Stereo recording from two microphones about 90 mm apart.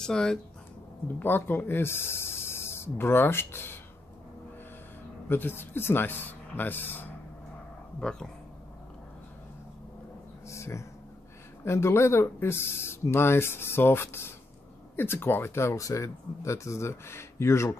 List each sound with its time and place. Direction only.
0.0 s speech: 10° left (ahead or behind)
1.0 s speech: 25° left (ahead or behind)
5.3 s speech: 25° left (ahead or behind)
8.0 s speech: 5° left (ahead or behind)
10.5 s a sound: 35° left (ahead or behind)
11.6 s speech: 30° left (ahead or behind)